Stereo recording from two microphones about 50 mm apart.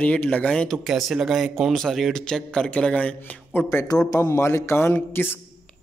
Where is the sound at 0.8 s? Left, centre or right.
Centre.